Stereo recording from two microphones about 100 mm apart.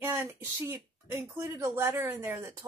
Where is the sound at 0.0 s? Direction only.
25° right (ahead or behind).